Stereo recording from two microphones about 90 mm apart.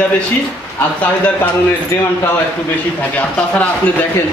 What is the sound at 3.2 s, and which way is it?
Speech, 15° left (ahead or behind).